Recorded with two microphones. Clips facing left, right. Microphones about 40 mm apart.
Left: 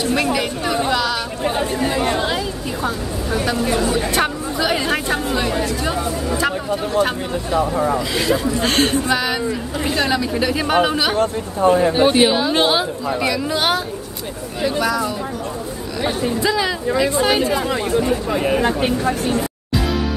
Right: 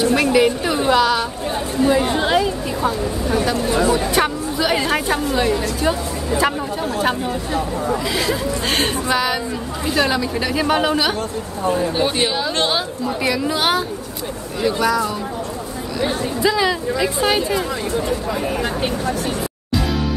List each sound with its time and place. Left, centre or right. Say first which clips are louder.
0.1 s a woman's voice: right 4 dB; centre
2.8 s speech: right 3 dB; centre
6.4 s a woman's voice: right 2 dB; centre
8.1 s speech: left 2 dB; centre
11.1 s speech: left 6 dB; left
11.9 s speech: left 5 dB; left
13.2 s speech: right 1 dB; centre